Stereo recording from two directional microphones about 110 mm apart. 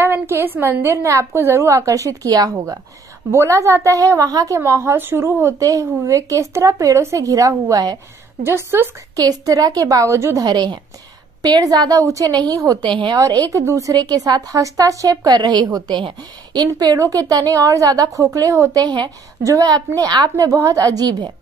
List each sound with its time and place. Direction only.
0.0 s a woman's voice: 20° right (ahead or behind)
8.5 s a woman's voice: 20° right (ahead or behind)
9.1 s a woman's voice: 35° right (ahead or behind)
10.4 s a woman's voice: 40° right (ahead or behind)
12.8 s a woman's voice: 45° right (ahead or behind)
13.5 s a woman's voice: 30° right (ahead or behind)